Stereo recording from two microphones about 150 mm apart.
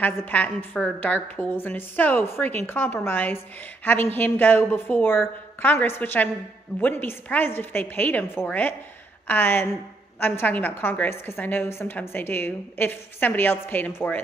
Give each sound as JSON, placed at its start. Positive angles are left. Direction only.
{"t": 0.0, "sound": "a woman's voice", "side_deg": 10}